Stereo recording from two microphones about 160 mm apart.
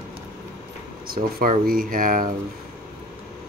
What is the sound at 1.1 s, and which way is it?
Speech, 65° right (ahead or behind).